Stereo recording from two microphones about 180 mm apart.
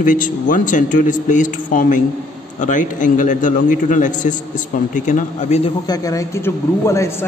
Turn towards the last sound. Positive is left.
turn(degrees=15)  # may be behind; listen again after turning